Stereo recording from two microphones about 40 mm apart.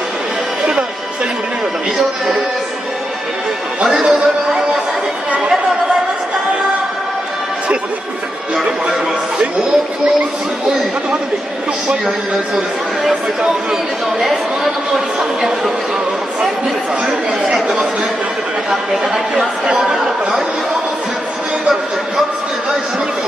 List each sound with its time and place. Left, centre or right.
2.0 s speech: centre
3.8 s music: centre
15.1 s speech: centre
18.7 s speech: centre
19.3 s speech: right